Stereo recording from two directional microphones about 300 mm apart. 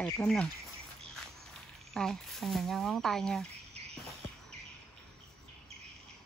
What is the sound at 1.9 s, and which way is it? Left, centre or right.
Speech, centre.